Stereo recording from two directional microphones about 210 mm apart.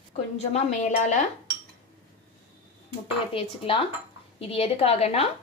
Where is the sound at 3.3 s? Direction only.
25° left (ahead or behind).